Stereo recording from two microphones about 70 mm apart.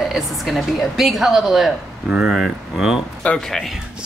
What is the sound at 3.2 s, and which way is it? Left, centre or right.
Speech, left.